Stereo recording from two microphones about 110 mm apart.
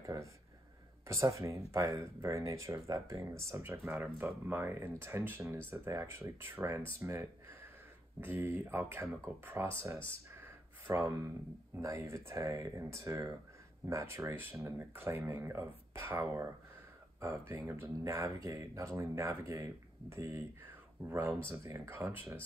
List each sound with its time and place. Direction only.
0.0 s speech: 30° right (ahead or behind)
10.4 s a sound: 20° right (ahead or behind)
11.8 s speech: 25° right (ahead or behind)
21.5 s speech: 25° right (ahead or behind)